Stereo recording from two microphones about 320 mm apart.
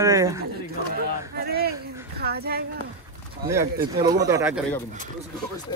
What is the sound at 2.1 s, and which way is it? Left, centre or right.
Speech, right.